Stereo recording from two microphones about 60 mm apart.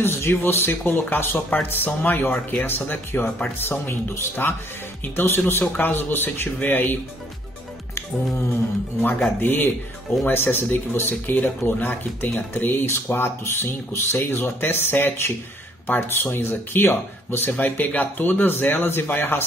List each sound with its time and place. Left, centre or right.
0.0 s speech: left
9.4 s speech: left